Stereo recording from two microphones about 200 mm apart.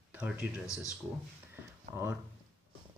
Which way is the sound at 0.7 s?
15° left (ahead or behind).